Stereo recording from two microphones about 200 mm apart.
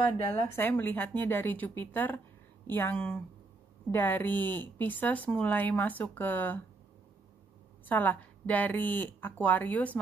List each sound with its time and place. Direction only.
0.6 s speech: 10° left (ahead or behind)
7.8 s speech: 10° left (ahead or behind)